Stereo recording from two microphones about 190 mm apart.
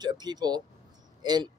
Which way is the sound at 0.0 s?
20° right (ahead or behind).